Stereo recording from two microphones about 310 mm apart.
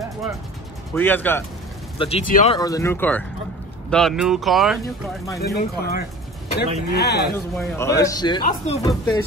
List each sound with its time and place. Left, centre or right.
0.9 s speech: centre
2.0 s speech: centre
5.4 s speech: left
7.5 s speech: centre